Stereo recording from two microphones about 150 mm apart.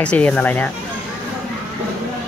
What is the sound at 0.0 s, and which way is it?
Speech, 10° left (ahead or behind).